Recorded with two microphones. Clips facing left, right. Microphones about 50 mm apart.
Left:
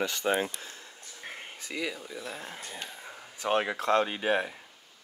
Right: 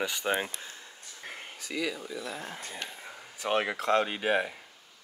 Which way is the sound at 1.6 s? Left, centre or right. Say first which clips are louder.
Right 2 dB; left.